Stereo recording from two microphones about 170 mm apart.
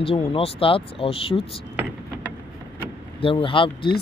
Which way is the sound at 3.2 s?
30° left (ahead or behind).